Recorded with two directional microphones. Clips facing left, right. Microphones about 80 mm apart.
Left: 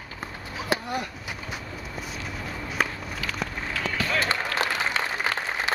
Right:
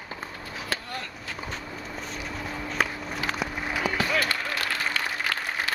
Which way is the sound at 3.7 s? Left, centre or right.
Centre.